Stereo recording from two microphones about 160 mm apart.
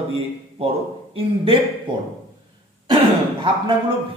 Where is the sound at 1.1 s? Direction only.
35° right (ahead or behind).